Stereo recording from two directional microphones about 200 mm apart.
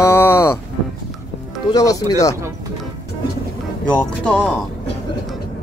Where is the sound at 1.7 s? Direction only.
20° left (ahead or behind).